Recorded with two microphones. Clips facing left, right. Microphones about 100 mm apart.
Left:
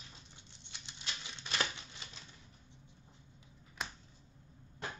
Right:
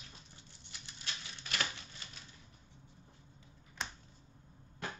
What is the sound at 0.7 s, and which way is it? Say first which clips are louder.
Typewriter: left 1 dB; 20° left (ahead or behind).